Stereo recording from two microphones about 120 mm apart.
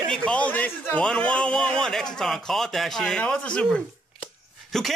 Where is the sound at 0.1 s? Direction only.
10° left (ahead or behind).